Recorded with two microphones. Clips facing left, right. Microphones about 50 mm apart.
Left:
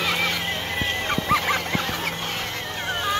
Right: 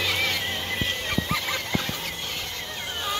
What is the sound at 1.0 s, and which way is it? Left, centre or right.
Goose, left.